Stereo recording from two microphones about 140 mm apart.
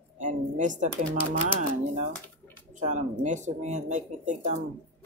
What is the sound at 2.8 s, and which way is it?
Speech, 60° right (ahead or behind).